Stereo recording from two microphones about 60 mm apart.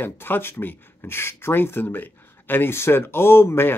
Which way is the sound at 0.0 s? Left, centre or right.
Left.